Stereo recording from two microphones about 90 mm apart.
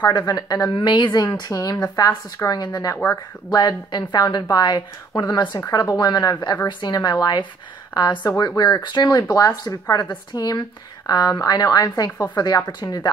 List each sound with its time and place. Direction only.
0.3 s a woman's voice: 50° left (ahead or behind)